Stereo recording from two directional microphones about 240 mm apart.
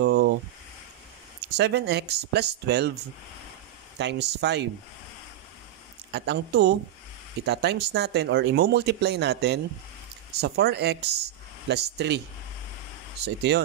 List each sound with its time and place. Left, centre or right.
0.0 s a sound: right
1.6 s speech: right
4.0 s speech: right
6.1 s speech: right
13.2 s speech: right